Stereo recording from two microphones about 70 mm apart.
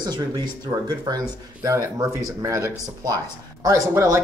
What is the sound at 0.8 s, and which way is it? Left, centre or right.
Speech, right.